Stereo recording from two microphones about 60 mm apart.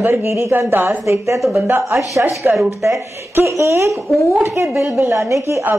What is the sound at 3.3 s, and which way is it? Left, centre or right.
A woman's voice, right.